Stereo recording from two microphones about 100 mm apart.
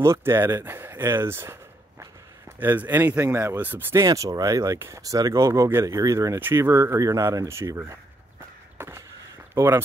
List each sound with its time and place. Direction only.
0.0 s speech: 25° right (ahead or behind)
3.9 s speech: 35° right (ahead or behind)
8.7 s a sound: 25° right (ahead or behind)
9.5 s speech: 20° right (ahead or behind)